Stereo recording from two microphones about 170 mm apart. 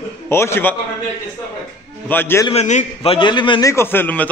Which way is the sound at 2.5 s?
40° left (ahead or behind).